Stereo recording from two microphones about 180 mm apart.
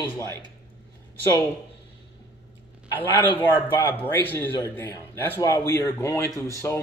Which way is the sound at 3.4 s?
10° left (ahead or behind).